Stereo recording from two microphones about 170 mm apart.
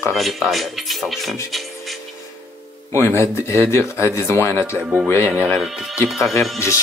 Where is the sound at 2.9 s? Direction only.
15° left (ahead or behind).